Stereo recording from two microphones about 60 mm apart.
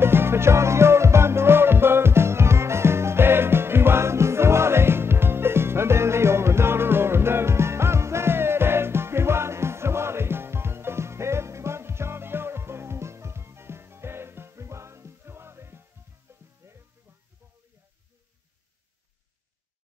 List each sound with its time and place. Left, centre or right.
0.0 s music: right